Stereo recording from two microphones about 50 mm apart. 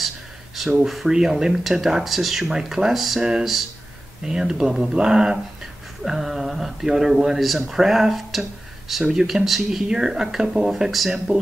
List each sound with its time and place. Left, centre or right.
0.8 s speech: centre
3.2 s speech: centre
10.9 s speech: centre